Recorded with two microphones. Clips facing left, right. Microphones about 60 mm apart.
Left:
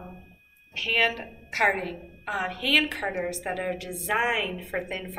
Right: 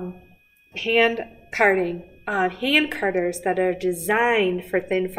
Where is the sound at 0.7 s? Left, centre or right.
Centre.